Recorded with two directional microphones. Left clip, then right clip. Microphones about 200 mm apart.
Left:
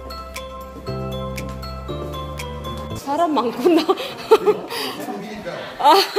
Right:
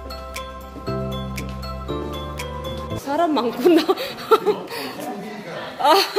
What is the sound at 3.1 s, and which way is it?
A woman's voice, centre (ahead or behind).